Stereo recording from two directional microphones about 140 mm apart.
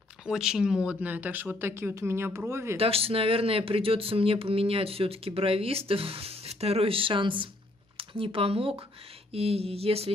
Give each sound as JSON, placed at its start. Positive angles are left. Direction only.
{"t": 0.2, "sound": "speech", "side_deg": -5}
{"t": 2.8, "sound": "speech", "side_deg": -45}